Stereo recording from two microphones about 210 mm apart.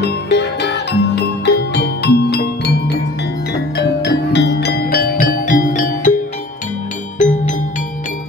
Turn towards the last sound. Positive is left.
turn(degrees=35)  # may be behind; listen again after turning